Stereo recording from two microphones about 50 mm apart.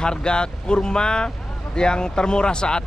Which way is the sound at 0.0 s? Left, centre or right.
Centre.